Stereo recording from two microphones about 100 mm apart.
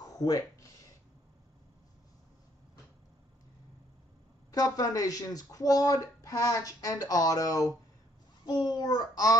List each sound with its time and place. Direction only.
0.0 s speech: 40° left (ahead or behind)
4.5 s a child's voice: 35° left (ahead or behind)